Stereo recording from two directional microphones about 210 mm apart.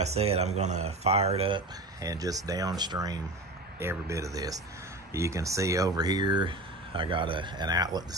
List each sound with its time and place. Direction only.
0.0 s speech: 30° right (ahead or behind)
2.0 s speech: 15° right (ahead or behind)